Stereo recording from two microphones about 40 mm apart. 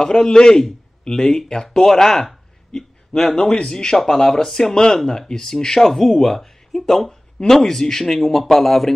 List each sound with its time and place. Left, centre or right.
0.0 s speech: centre